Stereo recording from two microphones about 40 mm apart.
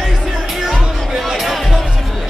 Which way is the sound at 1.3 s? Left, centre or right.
Centre.